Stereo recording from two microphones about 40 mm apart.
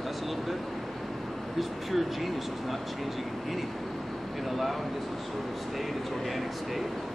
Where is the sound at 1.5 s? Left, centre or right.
Centre.